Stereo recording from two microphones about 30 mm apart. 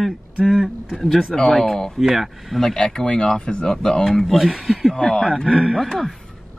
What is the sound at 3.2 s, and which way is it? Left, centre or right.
Speech, left.